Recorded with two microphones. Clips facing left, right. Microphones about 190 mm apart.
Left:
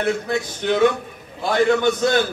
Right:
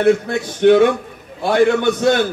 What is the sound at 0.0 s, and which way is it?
A man's voice, 60° right (ahead or behind).